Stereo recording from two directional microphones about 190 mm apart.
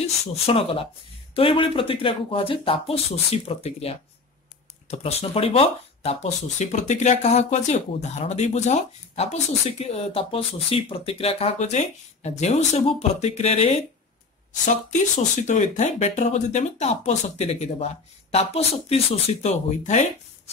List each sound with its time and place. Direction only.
0.0 s speech: 30° left (ahead or behind)